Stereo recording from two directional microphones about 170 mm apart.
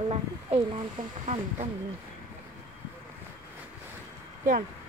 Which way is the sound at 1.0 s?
50° right (ahead or behind).